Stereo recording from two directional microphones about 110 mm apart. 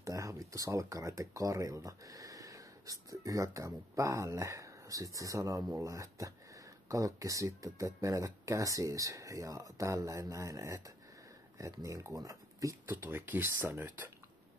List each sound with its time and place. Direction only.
0.0 s speech: 30° right (ahead or behind)
12.9 s speech: 20° right (ahead or behind)